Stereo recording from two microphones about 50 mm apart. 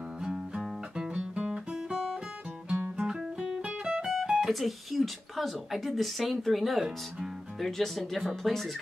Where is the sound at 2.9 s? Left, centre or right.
Centre.